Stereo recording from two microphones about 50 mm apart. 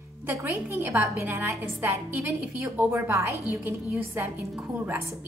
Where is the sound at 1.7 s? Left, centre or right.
Right.